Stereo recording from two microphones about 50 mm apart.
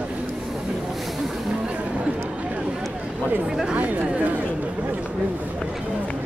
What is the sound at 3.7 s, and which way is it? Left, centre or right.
Speech, right.